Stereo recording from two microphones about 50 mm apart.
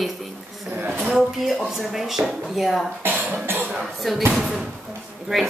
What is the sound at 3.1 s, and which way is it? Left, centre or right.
Cough, right.